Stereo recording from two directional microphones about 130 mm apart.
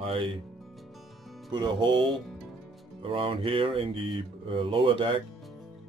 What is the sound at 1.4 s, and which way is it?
Speech, 35° right (ahead or behind).